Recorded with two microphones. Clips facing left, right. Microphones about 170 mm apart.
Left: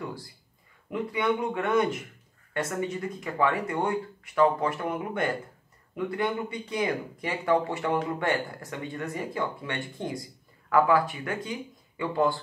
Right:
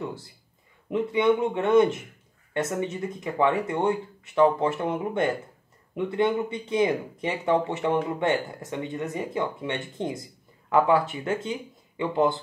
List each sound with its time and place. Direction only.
0.0 s speech: 20° right (ahead or behind)